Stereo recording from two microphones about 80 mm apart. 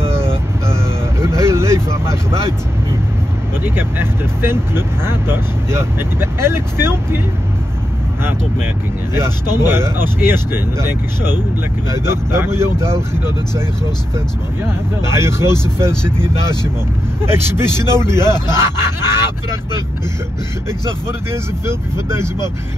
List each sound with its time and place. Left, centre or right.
0.0 s vehicle: right
3.6 s speech: right
9.7 s speech: right
21.9 s speech: right